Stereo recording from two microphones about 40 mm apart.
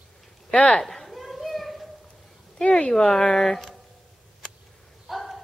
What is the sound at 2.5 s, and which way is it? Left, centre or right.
Speech, left.